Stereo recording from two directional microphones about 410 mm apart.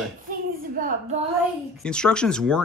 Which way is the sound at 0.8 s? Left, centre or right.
Centre.